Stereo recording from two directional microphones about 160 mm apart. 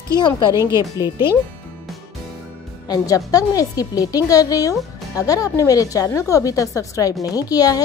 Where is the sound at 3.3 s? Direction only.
20° left (ahead or behind).